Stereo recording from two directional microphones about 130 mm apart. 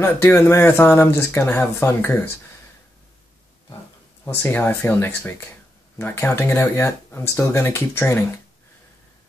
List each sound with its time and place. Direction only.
0.0 s speech: 20° left (ahead or behind)
4.2 s speech: 15° left (ahead or behind)